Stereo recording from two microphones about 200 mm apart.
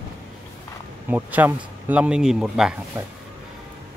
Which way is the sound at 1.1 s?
10° right (ahead or behind).